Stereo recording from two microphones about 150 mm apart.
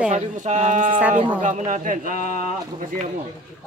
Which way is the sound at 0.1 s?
50° right (ahead or behind).